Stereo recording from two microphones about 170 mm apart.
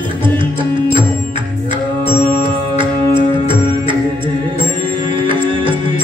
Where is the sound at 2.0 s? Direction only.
30° right (ahead or behind).